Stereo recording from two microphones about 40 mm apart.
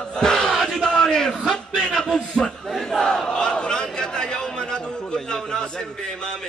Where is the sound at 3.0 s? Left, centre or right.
Centre.